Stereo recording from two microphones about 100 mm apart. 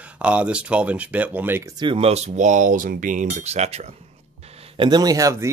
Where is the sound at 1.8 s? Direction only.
70° right (ahead or behind).